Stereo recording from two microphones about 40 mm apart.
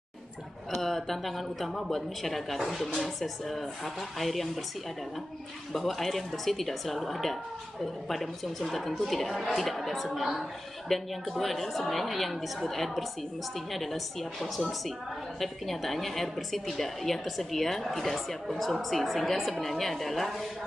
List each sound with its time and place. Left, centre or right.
0.7 s a woman's voice: centre
5.7 s a woman's voice: centre